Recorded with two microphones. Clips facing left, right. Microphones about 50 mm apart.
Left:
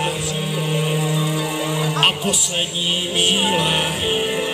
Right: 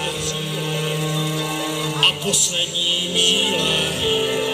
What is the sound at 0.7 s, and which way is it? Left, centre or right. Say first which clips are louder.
Music: left 3 dB; centre.